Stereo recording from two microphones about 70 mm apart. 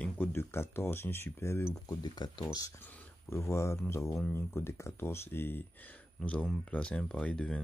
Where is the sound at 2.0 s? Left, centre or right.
Left.